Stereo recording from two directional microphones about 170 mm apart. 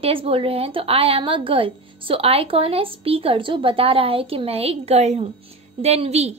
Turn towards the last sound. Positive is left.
turn(degrees=-40)  # may be behind; listen again after turning